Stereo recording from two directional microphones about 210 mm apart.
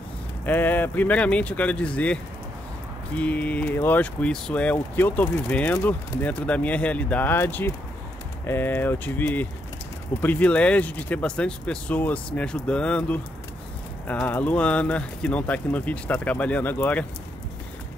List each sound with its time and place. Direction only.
0.5 s speech: 10° left (ahead or behind)
3.2 s speech: 5° left (ahead or behind)